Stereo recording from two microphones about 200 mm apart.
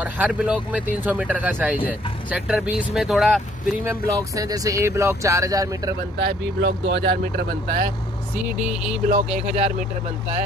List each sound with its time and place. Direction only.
0.0 s speech: 5° right (ahead or behind)
3.8 s speech: 15° right (ahead or behind)
6.1 s speech: 55° right (ahead or behind)
8.5 s speech: 5° right (ahead or behind)
9.1 s speech: 35° right (ahead or behind)